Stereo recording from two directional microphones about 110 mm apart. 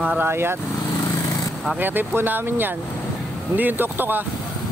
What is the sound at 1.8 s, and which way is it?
Speech, 15° right (ahead or behind).